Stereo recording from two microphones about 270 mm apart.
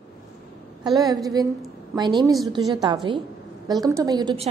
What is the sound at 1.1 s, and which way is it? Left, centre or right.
A woman's voice, centre.